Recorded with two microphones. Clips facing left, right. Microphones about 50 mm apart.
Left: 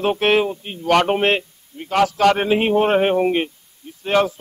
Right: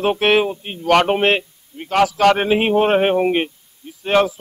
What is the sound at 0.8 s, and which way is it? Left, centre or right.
Speech, centre.